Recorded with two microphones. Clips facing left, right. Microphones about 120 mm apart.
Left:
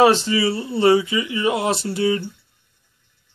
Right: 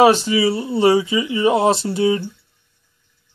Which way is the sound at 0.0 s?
15° right (ahead or behind).